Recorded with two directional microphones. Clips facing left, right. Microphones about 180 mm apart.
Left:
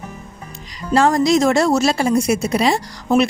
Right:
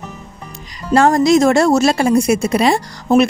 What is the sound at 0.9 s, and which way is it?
Speech, 55° right (ahead or behind).